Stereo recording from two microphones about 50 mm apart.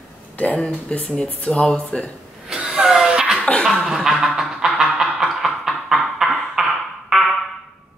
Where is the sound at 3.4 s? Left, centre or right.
Left.